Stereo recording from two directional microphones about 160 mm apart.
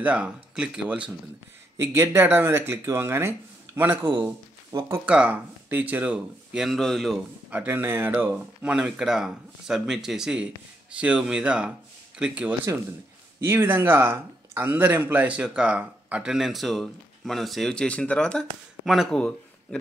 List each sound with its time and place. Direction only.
0.0 s speech: 5° right (ahead or behind)
7.4 s speech: 10° right (ahead or behind); by 19.8 s 5° left (ahead or behind)